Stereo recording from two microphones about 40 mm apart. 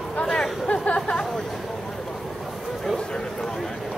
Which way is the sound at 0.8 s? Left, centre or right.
Left.